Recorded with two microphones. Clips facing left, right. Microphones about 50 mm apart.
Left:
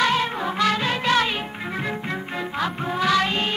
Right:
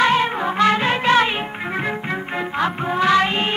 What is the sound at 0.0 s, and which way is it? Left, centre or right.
Music, right.